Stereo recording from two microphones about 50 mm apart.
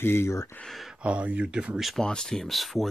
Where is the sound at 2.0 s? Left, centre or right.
Centre.